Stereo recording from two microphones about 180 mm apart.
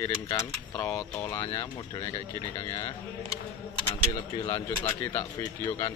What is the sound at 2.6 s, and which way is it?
Speech, 20° left (ahead or behind).